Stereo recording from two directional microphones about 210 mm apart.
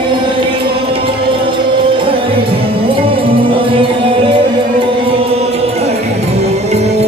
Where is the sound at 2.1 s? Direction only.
25° right (ahead or behind).